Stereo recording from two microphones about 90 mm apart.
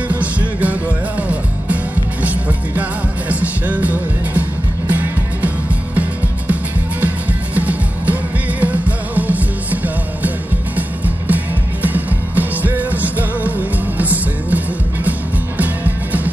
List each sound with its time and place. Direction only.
0.1 s music: 15° right (ahead or behind)
2.2 s music: 15° right (ahead or behind)
10.8 s music: 20° right (ahead or behind)